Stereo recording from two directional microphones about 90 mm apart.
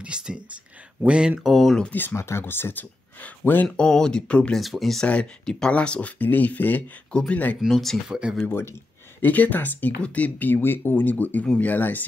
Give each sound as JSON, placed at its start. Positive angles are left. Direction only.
{"t": 0.0, "sound": "whispering", "side_deg": -10}
{"t": 1.0, "sound": "speech", "side_deg": -10}
{"t": 1.5, "sound": "speech", "side_deg": 5}
{"t": 1.9, "sound": "speech", "side_deg": 25}
{"t": 3.6, "sound": "speech", "side_deg": 10}
{"t": 4.6, "sound": "speech", "side_deg": 0}
{"t": 5.0, "sound": "speech", "side_deg": 15}
{"t": 7.6, "sound": "speech", "side_deg": 0}
{"t": 8.1, "sound": "speech", "side_deg": -10}
{"t": 9.2, "sound": "speech", "side_deg": 20}